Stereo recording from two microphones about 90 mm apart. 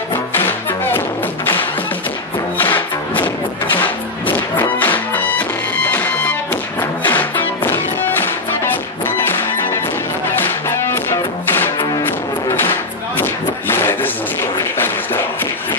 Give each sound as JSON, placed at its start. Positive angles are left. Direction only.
{"t": 0.5, "sound": "music", "side_deg": 25}
{"t": 2.5, "sound": "music", "side_deg": 20}
{"t": 4.6, "sound": "music", "side_deg": 20}
{"t": 10.9, "sound": "music", "side_deg": 25}
{"t": 13.2, "sound": "a sound", "side_deg": 25}